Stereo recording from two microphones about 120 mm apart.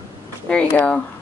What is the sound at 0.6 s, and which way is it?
Speech, 15° left (ahead or behind).